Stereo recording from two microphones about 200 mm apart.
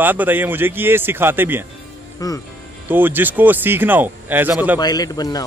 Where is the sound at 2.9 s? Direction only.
10° right (ahead or behind).